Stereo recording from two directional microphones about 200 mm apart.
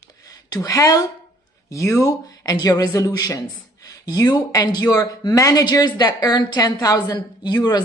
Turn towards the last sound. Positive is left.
turn(degrees=20)  # may be behind; listen again after turning